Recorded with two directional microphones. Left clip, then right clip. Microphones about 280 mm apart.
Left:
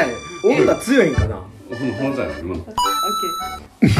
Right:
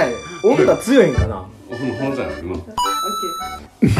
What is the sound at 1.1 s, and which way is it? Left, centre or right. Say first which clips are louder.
Speech: right 1 dB; centre.